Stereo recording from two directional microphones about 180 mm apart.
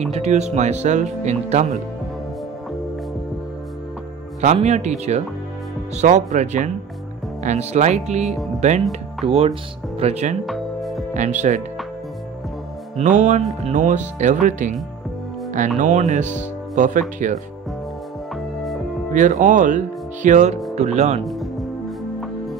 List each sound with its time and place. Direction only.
0.1 s speech: 40° right (ahead or behind)
4.4 s speech: 40° right (ahead or behind)
10.4 s music: centre (ahead or behind)
11.1 s speech: 45° right (ahead or behind)
12.9 s speech: 40° right (ahead or behind)
15.8 s speech: 45° right (ahead or behind)
18.3 s music: centre (ahead or behind)
19.1 s speech: 45° right (ahead or behind)
21.2 s music: centre (ahead or behind)